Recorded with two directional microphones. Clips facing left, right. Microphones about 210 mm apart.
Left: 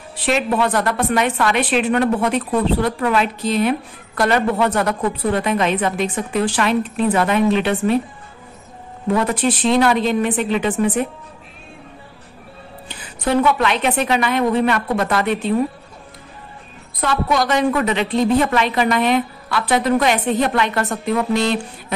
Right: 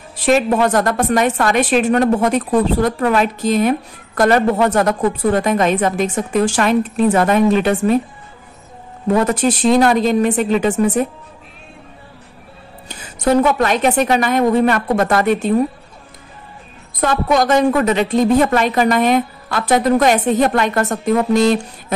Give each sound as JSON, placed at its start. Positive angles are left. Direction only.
{"t": 0.1, "sound": "a woman's voice", "side_deg": -45}
{"t": 9.0, "sound": "a woman's voice", "side_deg": -45}
{"t": 12.8, "sound": "a woman's voice", "side_deg": -45}
{"t": 17.0, "sound": "a woman's voice", "side_deg": -45}